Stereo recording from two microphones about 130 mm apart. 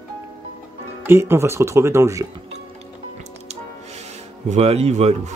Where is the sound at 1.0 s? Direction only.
20° right (ahead or behind).